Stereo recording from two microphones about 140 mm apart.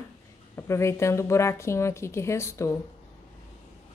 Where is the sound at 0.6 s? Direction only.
20° left (ahead or behind).